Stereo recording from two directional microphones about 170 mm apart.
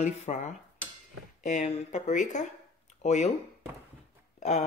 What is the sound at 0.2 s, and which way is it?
Speech, 45° left (ahead or behind).